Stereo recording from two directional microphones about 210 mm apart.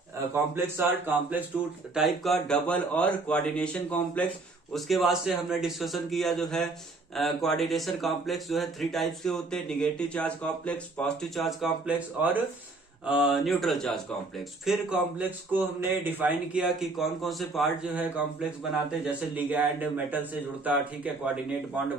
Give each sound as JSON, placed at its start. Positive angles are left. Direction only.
{"t": 0.3, "sound": "speech", "side_deg": -10}